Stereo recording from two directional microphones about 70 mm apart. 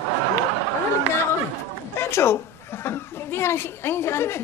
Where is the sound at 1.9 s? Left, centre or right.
Left.